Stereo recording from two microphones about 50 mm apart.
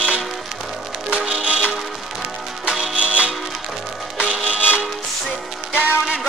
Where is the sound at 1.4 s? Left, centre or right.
Right.